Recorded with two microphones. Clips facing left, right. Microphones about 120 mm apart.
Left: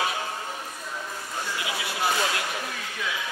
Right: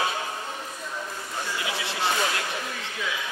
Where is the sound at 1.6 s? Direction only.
25° right (ahead or behind).